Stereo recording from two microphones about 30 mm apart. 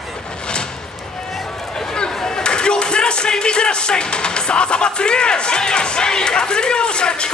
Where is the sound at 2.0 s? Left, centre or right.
Left.